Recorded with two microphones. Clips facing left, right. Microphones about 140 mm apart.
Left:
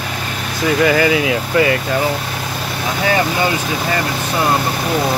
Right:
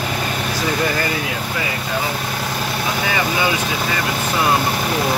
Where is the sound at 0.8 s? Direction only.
90° left.